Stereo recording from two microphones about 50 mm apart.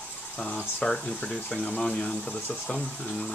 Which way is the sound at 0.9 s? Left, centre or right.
Centre.